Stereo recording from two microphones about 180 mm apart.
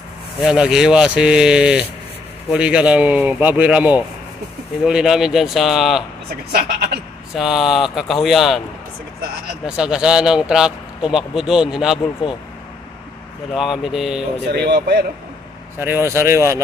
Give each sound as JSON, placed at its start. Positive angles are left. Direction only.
{"t": 0.4, "sound": "a man's voice", "side_deg": -5}
{"t": 6.5, "sound": "speech", "side_deg": -65}
{"t": 7.3, "sound": "a man's voice", "side_deg": 0}
{"t": 9.8, "sound": "a man's voice", "side_deg": -5}
{"t": 13.5, "sound": "a man's voice", "side_deg": 0}
{"t": 14.5, "sound": "speech", "side_deg": -65}
{"t": 15.8, "sound": "speech", "side_deg": -15}